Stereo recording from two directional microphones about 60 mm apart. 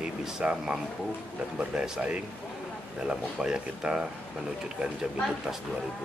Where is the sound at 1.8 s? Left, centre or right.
Centre.